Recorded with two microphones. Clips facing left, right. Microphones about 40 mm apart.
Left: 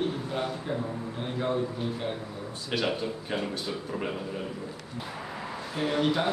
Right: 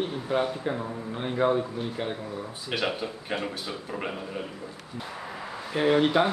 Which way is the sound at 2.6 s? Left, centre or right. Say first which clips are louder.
Even; centre.